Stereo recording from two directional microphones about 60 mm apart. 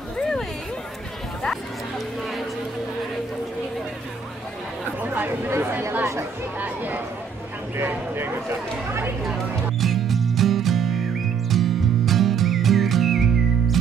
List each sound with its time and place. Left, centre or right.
0.2 s a sound: centre
5.0 s chatter: right
5.6 s speech: right
6.6 s speech: right
7.7 s speech: right
9.2 s music: centre